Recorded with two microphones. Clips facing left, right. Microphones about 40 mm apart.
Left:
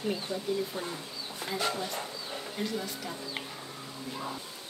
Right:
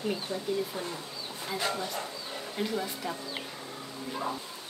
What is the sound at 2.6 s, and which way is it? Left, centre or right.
Speech, centre.